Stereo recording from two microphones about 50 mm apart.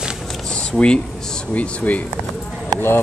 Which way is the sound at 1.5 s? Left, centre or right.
Left.